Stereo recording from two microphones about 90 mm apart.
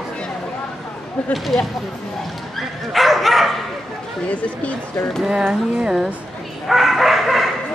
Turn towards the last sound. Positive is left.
turn(degrees=0)  # may be behind; listen again after turning